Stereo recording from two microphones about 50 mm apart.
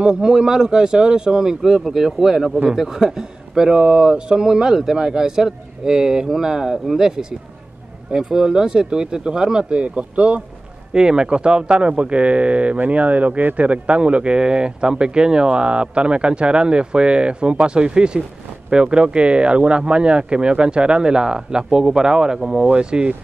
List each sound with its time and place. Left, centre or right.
0.0 s speech: centre; by 13.7 s right
13.7 s speech: right